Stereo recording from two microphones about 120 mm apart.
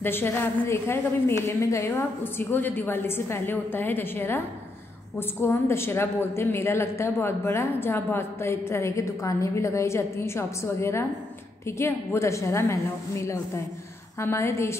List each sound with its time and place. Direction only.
0.0 s a woman's voice: 20° left (ahead or behind)
5.4 s a woman's voice: 20° left (ahead or behind)